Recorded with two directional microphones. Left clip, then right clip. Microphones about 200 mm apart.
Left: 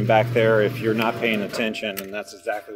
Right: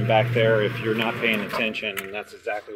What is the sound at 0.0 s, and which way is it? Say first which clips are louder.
Speech: left 2 dB; 20° left (ahead or behind).